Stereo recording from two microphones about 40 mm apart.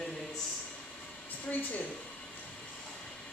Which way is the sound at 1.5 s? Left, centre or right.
Left.